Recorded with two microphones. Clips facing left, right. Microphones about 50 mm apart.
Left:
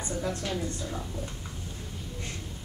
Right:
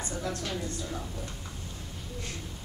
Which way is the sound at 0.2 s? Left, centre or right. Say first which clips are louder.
Left 2 dB; centre.